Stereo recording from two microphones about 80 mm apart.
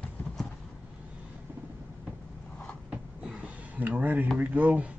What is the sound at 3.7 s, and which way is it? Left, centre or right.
Speech, centre.